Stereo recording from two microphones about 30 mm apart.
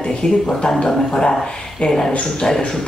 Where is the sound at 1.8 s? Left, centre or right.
Centre.